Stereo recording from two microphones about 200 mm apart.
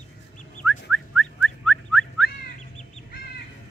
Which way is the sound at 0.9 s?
Centre (ahead or behind).